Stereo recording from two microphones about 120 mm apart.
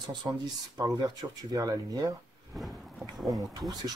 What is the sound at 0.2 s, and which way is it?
Speech, 30° right (ahead or behind).